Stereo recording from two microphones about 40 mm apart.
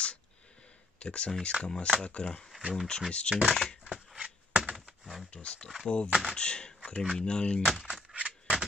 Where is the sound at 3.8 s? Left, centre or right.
Centre.